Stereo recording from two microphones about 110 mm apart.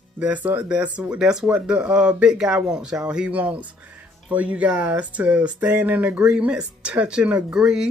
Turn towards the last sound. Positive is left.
turn(degrees=-5)  # may be behind; listen again after turning